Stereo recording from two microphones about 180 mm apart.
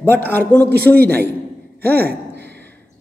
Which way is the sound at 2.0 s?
65° right (ahead or behind).